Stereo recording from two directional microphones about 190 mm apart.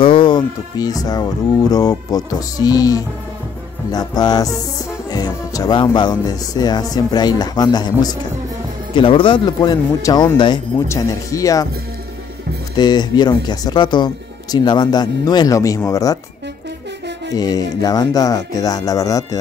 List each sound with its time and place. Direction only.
0.0 s speech: 25° left (ahead or behind)
12.7 s speech: 20° left (ahead or behind)
17.3 s speech: 20° left (ahead or behind)